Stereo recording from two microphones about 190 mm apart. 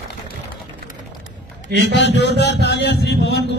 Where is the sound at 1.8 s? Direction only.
65° left (ahead or behind).